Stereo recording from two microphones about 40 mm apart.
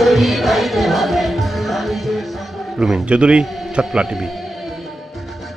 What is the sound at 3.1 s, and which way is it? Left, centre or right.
Speech, right.